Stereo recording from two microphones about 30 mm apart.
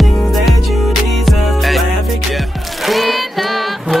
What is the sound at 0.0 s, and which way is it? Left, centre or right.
Music, centre.